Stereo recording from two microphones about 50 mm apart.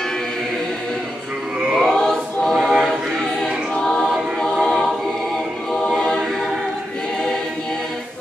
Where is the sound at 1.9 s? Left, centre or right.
Centre.